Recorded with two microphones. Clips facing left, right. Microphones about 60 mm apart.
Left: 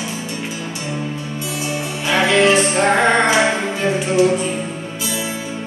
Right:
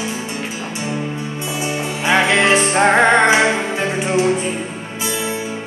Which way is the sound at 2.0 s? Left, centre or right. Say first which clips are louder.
Even; right.